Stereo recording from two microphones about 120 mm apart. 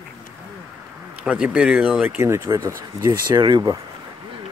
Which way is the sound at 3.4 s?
35° right (ahead or behind).